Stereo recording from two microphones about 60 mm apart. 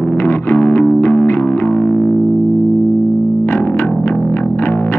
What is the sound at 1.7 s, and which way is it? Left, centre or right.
Music, left.